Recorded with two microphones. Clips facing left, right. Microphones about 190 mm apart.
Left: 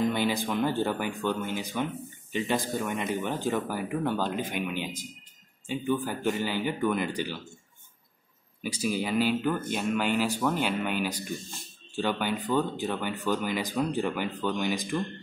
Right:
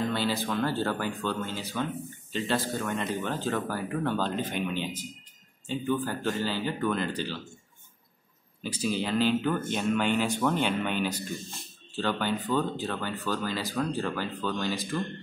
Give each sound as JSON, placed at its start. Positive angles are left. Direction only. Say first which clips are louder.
{"t": 0.0, "sound": "speech", "louder": "left 2 dB", "side_deg": 15}
{"t": 8.6, "sound": "speech", "louder": "even", "side_deg": 10}